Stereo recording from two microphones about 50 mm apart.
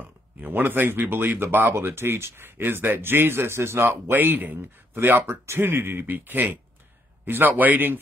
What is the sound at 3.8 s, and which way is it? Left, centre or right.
Speech, right.